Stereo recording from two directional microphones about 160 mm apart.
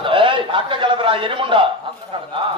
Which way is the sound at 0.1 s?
30° right (ahead or behind).